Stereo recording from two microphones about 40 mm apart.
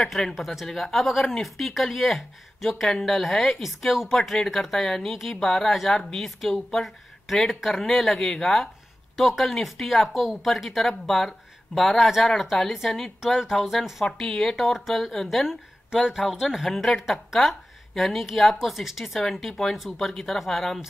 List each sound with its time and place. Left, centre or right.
0.0 s speech: centre
4.8 s speech: centre
14.0 s speech: centre